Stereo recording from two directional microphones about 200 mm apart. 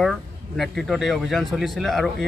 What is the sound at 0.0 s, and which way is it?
Speech, centre (ahead or behind).